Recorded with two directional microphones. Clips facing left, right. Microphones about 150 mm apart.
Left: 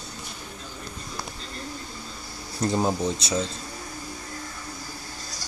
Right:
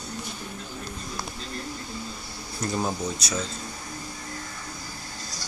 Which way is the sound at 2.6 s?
25° left (ahead or behind).